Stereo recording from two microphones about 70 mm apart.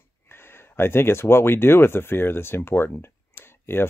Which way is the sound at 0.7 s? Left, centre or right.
Left.